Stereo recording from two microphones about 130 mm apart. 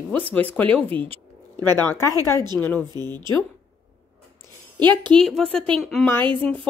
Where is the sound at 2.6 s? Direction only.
10° left (ahead or behind).